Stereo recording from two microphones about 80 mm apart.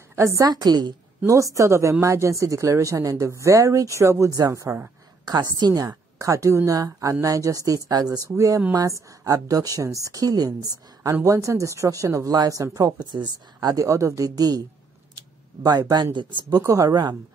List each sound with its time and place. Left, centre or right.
0.1 s a woman's voice: right
0.5 s speech: right
1.2 s speech: right
5.2 s a woman's voice: right
7.9 s speech: right
8.4 s a woman's voice: right
11.2 s a woman's voice: right
12.7 s a woman's voice: right
15.6 s speech: right
16.6 s a woman's voice: right